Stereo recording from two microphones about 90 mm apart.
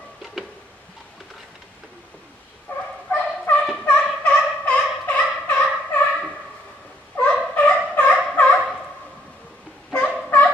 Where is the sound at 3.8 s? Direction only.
15° left (ahead or behind).